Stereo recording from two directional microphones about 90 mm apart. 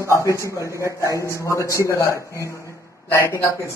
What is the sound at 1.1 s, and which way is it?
A man's voice, 35° left (ahead or behind).